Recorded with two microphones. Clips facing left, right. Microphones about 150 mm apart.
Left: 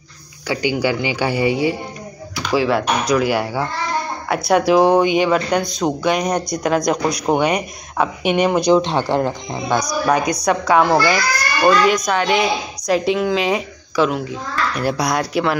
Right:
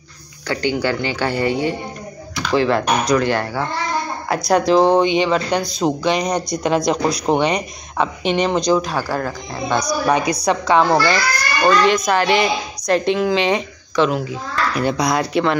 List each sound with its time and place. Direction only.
0.5 s a child's voice: 10° left (ahead or behind)
8.7 s speech: 25° left (ahead or behind)
9.8 s a child's voice: centre (ahead or behind)